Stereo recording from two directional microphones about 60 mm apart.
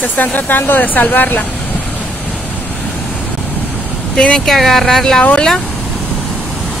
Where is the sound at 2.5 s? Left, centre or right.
Left.